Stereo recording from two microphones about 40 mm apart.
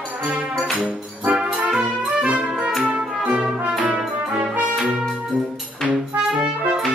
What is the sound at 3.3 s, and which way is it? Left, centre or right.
Brass instrument, right.